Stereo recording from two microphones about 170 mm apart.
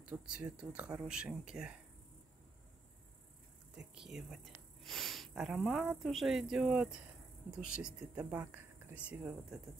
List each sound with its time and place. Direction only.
0.0 s speech: 5° right (ahead or behind)
3.7 s speech: 5° right (ahead or behind)